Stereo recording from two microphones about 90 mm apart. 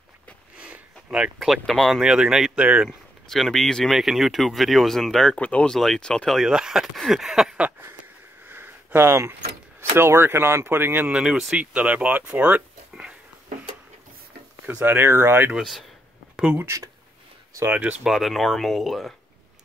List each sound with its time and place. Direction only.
0.6 s speech: 10° right (ahead or behind)
3.3 s speech: 5° left (ahead or behind)
6.4 s speech: 5° right (ahead or behind)
8.0 s a sound: 20° right (ahead or behind)
9.8 s speech: 30° right (ahead or behind)
11.1 s speech: 10° right (ahead or behind)
14.7 s speech: 20° right (ahead or behind)
15.5 s speech: centre (ahead or behind)
16.5 s speech: 35° right (ahead or behind)
17.6 s speech: 20° right (ahead or behind)
18.0 s speech: centre (ahead or behind)